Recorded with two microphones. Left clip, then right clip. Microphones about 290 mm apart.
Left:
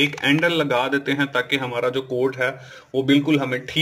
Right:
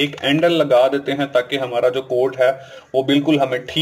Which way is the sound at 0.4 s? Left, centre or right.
Left.